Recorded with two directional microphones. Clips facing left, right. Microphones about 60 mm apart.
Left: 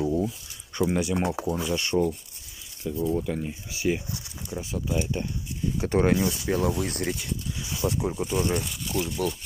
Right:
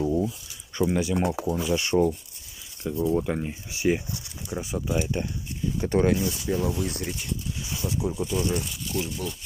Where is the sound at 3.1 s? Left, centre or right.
Right.